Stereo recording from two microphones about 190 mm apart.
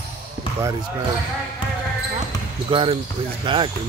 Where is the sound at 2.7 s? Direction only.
25° right (ahead or behind).